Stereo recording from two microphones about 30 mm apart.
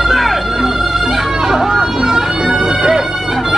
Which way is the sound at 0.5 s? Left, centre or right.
Centre.